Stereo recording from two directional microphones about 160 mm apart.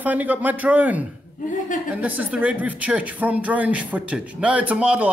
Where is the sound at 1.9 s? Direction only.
10° right (ahead or behind).